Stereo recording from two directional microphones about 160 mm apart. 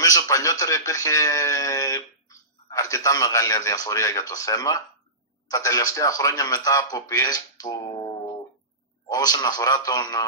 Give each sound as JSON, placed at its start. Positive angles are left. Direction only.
{"t": 0.0, "sound": "speech", "side_deg": 20}